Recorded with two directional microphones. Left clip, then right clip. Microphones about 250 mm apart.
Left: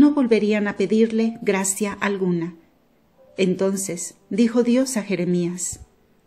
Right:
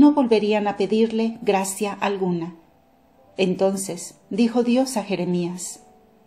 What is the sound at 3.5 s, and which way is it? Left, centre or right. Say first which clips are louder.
A woman's voice: right 1 dB; left.